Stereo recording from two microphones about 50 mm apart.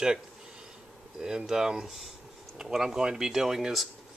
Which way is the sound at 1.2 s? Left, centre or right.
Centre.